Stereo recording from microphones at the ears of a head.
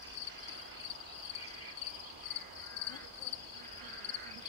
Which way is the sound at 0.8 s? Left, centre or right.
Left.